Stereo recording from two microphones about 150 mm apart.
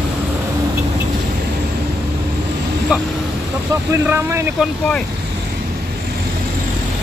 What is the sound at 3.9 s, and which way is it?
Speech, 20° right (ahead or behind).